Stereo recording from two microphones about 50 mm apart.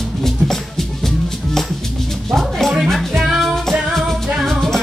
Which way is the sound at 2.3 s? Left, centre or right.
Centre.